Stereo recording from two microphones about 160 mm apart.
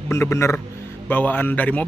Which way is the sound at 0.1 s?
15° left (ahead or behind).